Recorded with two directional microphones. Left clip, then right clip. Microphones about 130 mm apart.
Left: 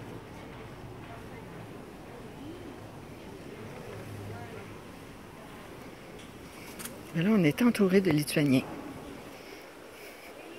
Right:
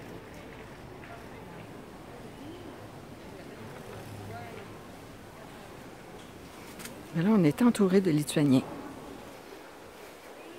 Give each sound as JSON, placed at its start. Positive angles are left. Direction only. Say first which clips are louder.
{"t": 7.2, "sound": "speech", "louder": "right 1 dB", "side_deg": -25}